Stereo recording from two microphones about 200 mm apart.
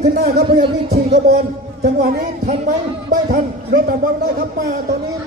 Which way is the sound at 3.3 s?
50° right (ahead or behind).